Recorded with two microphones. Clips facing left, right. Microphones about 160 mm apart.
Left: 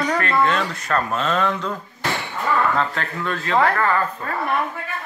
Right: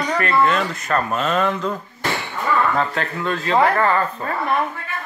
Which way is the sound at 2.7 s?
20° right (ahead or behind).